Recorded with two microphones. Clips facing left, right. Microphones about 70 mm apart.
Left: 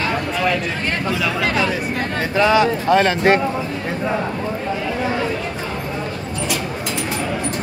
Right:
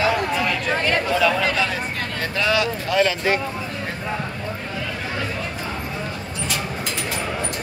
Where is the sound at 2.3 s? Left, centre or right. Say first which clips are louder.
Left 7 dB; left.